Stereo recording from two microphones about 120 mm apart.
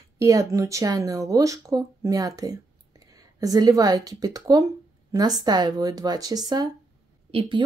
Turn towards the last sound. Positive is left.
turn(degrees=-50)  # may be behind; listen again after turning